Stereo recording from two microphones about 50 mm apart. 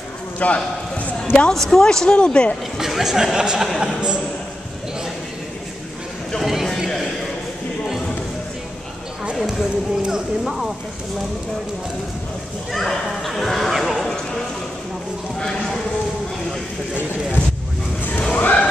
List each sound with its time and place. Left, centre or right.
0.4 s a man's voice: left
1.5 s speech: centre
2.8 s speech: centre
6.4 s a sound: centre
9.4 s speech: centre
12.7 s speech: centre
14.0 s music: centre
18.3 s crowd: left